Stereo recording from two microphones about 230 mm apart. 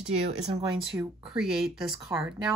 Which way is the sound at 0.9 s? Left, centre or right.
Centre.